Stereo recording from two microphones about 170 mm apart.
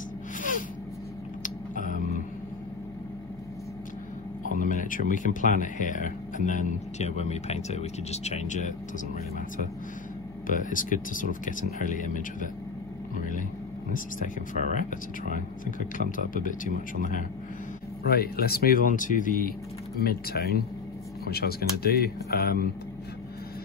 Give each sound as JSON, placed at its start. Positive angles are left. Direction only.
{"t": 0.4, "sound": "a sound", "side_deg": 50}
{"t": 4.6, "sound": "speech", "side_deg": 50}
{"t": 10.4, "sound": "speech", "side_deg": 50}
{"t": 16.3, "sound": "speech", "side_deg": 50}
{"t": 18.0, "sound": "speech", "side_deg": 65}
{"t": 20.0, "sound": "speech", "side_deg": 65}